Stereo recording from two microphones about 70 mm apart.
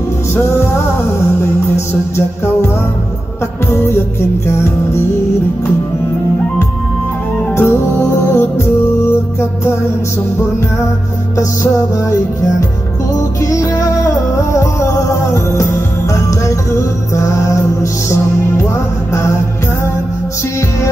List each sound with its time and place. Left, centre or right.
2.1 s music: left
3.7 s music: left
7.5 s music: left
11.6 s music: left